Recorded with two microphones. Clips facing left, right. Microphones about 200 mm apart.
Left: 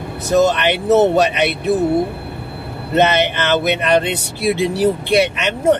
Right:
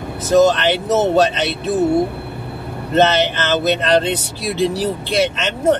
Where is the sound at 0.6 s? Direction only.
15° left (ahead or behind).